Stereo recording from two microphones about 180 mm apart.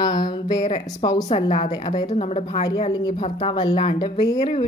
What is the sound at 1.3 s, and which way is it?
A woman's voice, 35° left (ahead or behind).